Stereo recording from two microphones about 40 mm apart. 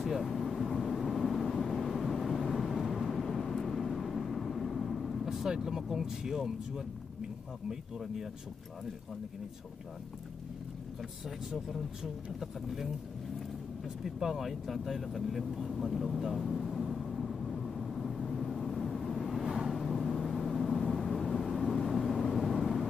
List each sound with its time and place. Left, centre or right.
0.2 s vehicle: centre
5.5 s speech: centre
11.2 s speech: centre
13.8 s vehicle: centre